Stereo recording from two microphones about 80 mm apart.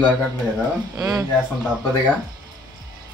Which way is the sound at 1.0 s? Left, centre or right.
Right.